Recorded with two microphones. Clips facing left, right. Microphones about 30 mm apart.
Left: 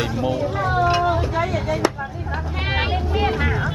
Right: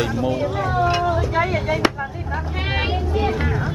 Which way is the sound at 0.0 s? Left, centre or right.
Centre.